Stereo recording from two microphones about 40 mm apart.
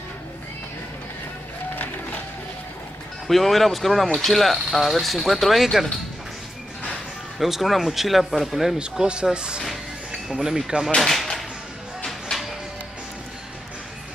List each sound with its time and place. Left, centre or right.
3.3 s speech: centre
7.3 s speech: centre
8.7 s speech: right
11.0 s speech: centre
12.1 s music: centre